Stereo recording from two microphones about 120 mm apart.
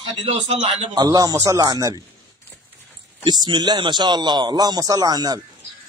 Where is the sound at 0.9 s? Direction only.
35° right (ahead or behind).